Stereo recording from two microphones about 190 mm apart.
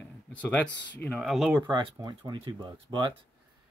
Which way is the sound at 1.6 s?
25° right (ahead or behind).